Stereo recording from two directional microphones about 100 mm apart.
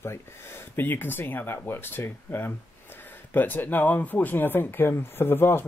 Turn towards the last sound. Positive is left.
turn(degrees=25)  # may be behind; listen again after turning